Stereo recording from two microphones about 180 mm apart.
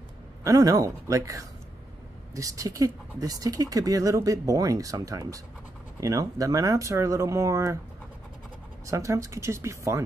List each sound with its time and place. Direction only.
0.4 s speech: 20° right (ahead or behind)
8.8 s speech: 15° right (ahead or behind)